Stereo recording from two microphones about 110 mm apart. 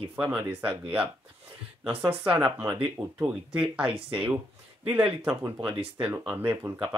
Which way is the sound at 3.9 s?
50° right (ahead or behind).